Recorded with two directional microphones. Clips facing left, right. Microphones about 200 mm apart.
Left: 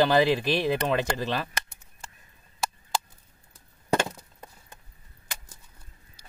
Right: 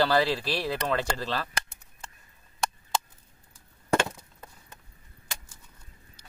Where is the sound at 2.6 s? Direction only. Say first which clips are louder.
Right 1 dB; centre (ahead or behind).